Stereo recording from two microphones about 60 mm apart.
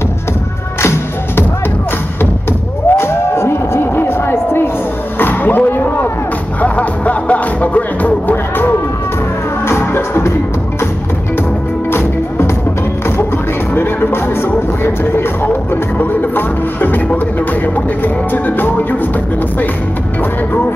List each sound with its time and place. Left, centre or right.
0.7 s music: left
2.9 s a sound: left
5.2 s music: left
5.7 s a sound: left
6.6 s music: left
11.9 s music: left
14.8 s music: left